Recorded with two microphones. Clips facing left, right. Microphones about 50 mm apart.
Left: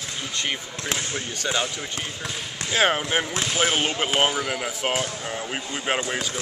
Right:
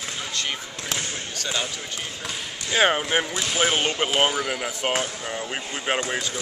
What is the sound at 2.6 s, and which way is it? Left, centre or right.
Speech, centre.